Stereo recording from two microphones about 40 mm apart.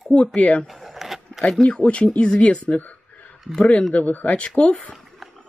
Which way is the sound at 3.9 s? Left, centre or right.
Left.